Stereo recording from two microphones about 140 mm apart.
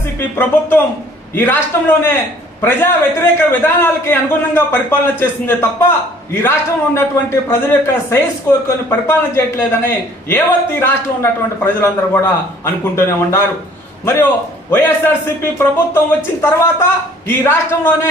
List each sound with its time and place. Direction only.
0.2 s a man's voice: 15° left (ahead or behind)
14.7 s a man's voice: 15° left (ahead or behind)